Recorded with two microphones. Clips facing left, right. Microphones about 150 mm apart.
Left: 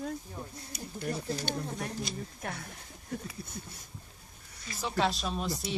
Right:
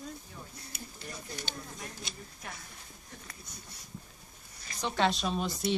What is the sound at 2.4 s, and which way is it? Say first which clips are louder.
Speech: left 6 dB; 55° left (ahead or behind).